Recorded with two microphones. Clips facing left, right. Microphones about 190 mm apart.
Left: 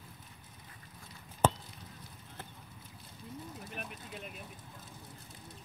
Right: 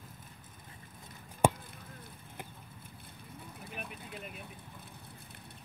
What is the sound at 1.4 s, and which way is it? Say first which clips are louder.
Chop: right 2 dB; 10° right (ahead or behind).